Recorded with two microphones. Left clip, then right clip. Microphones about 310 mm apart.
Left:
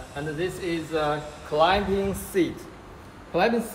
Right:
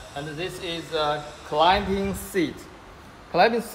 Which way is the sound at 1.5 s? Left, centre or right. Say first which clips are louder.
Right 1 dB; right.